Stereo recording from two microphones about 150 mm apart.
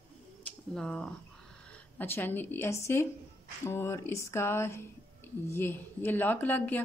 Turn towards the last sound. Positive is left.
turn(degrees=10)  # may be behind; listen again after turning